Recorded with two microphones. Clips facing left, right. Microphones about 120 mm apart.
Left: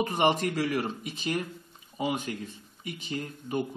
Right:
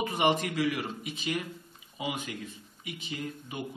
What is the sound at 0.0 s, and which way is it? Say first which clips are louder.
Speech: left 2 dB; 40° left (ahead or behind).